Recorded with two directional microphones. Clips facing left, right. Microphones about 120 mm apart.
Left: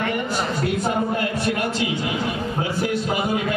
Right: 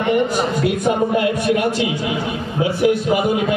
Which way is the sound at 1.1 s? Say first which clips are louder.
Right 6 dB; 15° right (ahead or behind).